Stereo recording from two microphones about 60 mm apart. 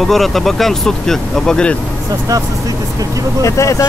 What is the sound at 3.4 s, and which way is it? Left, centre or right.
Speech, left.